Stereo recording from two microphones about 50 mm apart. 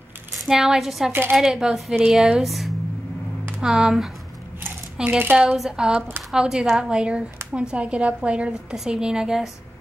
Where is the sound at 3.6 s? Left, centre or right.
Centre.